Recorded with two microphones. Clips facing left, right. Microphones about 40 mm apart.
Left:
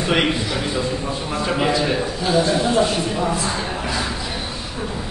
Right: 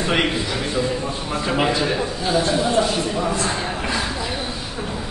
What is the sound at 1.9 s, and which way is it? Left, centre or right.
Speech, centre.